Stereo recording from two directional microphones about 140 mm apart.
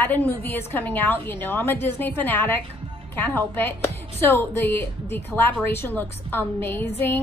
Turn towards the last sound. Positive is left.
turn(degrees=15)  # may be behind; listen again after turning